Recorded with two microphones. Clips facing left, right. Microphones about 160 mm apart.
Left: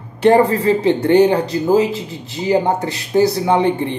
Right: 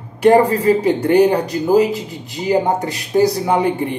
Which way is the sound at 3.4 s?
25° left (ahead or behind).